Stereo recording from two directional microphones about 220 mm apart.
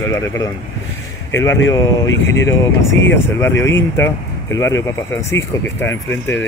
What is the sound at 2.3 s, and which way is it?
Speech, 60° left (ahead or behind).